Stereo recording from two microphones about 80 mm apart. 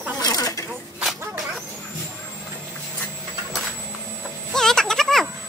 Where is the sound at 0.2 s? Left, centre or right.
Left.